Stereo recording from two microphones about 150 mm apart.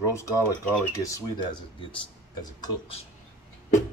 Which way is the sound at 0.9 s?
20° left (ahead or behind).